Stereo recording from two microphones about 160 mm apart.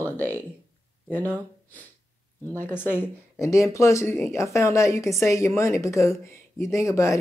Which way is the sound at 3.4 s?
20° left (ahead or behind).